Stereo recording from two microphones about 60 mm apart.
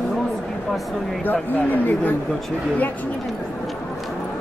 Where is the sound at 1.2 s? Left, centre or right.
Left.